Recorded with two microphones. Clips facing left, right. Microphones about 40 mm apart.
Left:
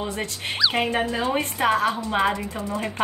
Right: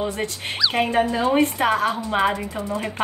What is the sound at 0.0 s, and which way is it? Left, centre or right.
A woman's voice, centre.